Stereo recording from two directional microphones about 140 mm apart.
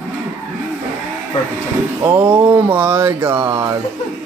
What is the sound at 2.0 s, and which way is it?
Speech, 15° right (ahead or behind).